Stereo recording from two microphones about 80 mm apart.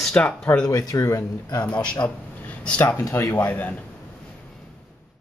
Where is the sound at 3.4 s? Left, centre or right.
Left.